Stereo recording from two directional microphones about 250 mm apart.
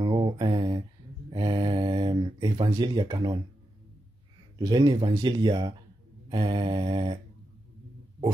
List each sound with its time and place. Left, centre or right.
0.0 s mantra: centre
4.6 s speech: centre